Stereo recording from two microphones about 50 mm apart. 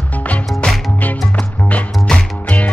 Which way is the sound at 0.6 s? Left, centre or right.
Centre.